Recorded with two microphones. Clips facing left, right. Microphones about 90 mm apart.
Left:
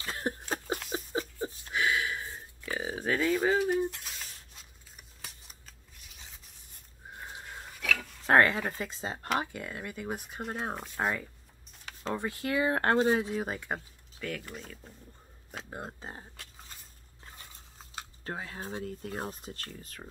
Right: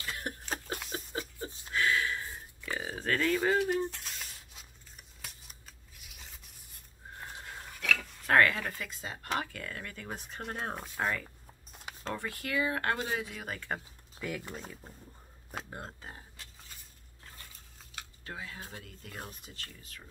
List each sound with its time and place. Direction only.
0.0 s a sound: 35° left (ahead or behind)
0.5 s a sound: 5° left (ahead or behind)
1.7 s a sound: 15° left (ahead or behind); by 4.6 s centre (ahead or behind)
5.2 s scissors: centre (ahead or behind)
8.3 s speech: 25° left (ahead or behind); by 10.9 s centre (ahead or behind)
11.0 s speech: 10° left (ahead or behind)
12.1 s speech: 20° left (ahead or behind)
14.2 s speech: 35° right (ahead or behind)
14.7 s speech: 15° right (ahead or behind)
15.5 s speech: 5° left (ahead or behind)
16.0 s speech: 30° left (ahead or behind)
18.2 s speech: 40° left (ahead or behind)